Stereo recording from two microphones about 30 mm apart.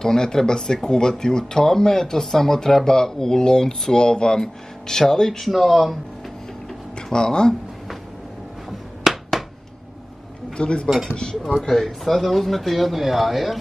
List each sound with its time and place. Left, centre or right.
0.0 s speech: left
5.4 s speech: centre
7.0 s speech: left
8.6 s finger snapping: centre
10.6 s speech: left
11.6 s speech: centre